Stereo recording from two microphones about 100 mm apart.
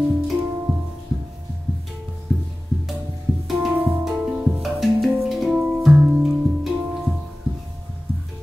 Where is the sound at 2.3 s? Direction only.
5° right (ahead or behind).